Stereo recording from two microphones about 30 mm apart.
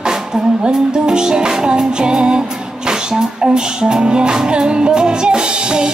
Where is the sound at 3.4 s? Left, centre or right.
Right.